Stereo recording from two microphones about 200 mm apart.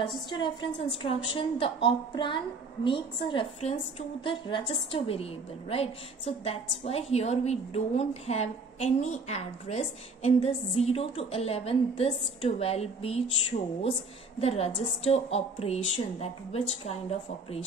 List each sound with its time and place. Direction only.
0.7 s a woman's voice: 25° left (ahead or behind)